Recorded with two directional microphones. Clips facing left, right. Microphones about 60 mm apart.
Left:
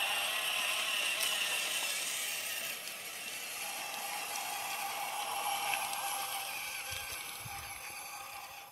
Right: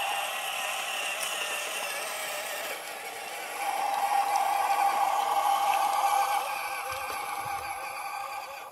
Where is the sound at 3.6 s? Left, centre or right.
Right.